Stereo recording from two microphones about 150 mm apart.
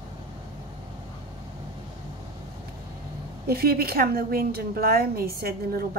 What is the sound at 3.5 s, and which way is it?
A woman's voice, 90° right.